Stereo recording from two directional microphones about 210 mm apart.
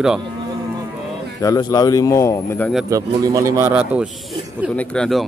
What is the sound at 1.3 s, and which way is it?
Speech, 20° left (ahead or behind).